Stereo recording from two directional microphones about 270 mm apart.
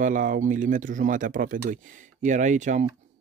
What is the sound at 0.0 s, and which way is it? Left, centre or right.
Speech, right.